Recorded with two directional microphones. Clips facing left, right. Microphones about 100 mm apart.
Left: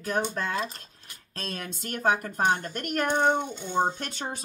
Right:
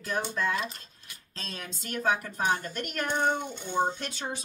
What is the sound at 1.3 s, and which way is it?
A woman's voice, 55° left (ahead or behind).